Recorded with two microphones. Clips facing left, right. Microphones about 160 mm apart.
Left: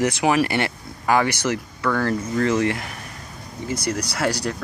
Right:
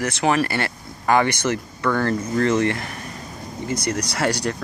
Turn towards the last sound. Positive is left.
turn(degrees=5)  # may be behind; listen again after turning